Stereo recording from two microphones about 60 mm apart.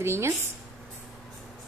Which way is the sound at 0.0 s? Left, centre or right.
Right.